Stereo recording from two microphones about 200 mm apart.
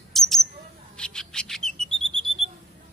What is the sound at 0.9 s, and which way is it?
Bird, 5° left (ahead or behind).